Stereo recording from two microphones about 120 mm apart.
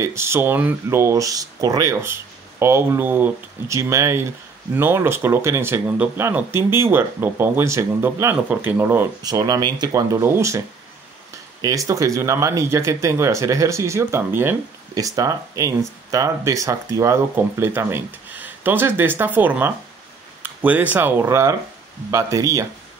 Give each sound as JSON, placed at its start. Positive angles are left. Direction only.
{"t": 0.0, "sound": "speech", "side_deg": -20}
{"t": 9.2, "sound": "speech", "side_deg": -30}
{"t": 10.2, "sound": "speech", "side_deg": -20}
{"t": 11.6, "sound": "speech", "side_deg": -30}
{"t": 15.0, "sound": "speech", "side_deg": -30}